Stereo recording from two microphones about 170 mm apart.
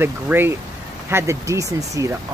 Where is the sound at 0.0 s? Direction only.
10° right (ahead or behind).